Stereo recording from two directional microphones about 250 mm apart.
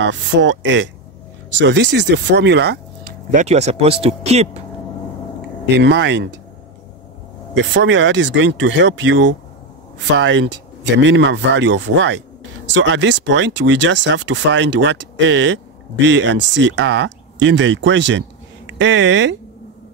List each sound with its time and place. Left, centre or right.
0.0 s speech: right
5.8 s speech: right
7.5 s speech: right